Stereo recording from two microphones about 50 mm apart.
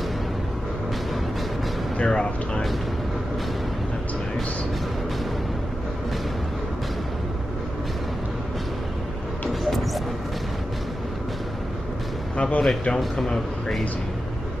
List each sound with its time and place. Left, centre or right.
2.0 s speech: left
9.5 s a sound: centre
12.4 s speech: left
13.3 s speech: centre